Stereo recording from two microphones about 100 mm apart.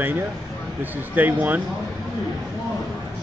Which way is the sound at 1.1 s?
15° right (ahead or behind).